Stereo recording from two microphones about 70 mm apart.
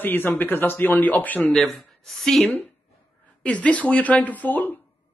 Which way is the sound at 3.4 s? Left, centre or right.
Centre.